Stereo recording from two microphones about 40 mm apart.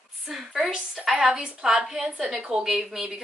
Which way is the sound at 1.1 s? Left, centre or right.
Right.